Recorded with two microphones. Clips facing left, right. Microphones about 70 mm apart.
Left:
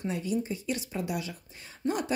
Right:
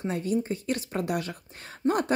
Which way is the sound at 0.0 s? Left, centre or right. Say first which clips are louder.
Right 3 dB; right.